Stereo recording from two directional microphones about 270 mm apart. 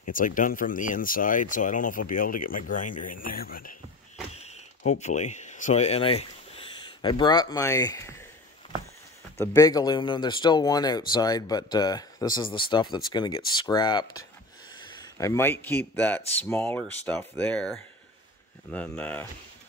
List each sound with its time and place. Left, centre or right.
0.1 s speech: left
4.3 s a sound: left
5.0 s speech: left
9.4 s a man's voice: centre